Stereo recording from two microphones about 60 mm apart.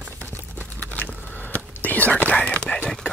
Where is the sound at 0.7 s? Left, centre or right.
Left.